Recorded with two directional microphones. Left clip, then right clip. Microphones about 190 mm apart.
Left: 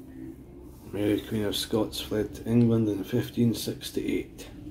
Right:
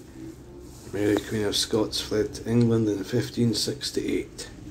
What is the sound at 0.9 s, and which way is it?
Speech, 15° left (ahead or behind).